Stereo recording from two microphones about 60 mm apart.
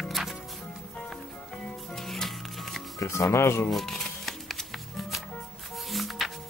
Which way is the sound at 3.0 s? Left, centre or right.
Left.